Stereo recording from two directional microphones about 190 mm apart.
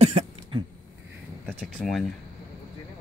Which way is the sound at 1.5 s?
Centre (ahead or behind).